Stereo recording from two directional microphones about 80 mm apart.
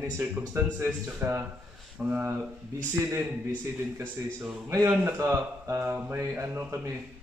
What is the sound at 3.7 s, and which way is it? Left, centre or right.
Speech, right.